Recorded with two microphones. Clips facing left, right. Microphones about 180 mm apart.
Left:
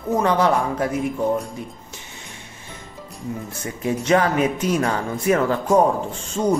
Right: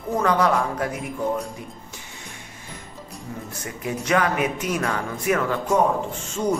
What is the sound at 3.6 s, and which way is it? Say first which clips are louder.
Speech: left 5 dB; 30° left (ahead or behind).